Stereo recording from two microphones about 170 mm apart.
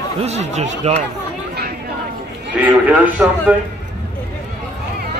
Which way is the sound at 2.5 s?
10° right (ahead or behind).